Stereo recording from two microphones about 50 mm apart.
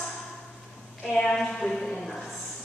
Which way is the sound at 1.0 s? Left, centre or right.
Centre.